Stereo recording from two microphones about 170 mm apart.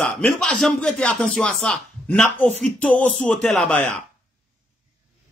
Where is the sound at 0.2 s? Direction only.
5° left (ahead or behind).